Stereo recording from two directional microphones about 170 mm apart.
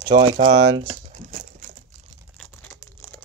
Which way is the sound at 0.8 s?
45° right (ahead or behind).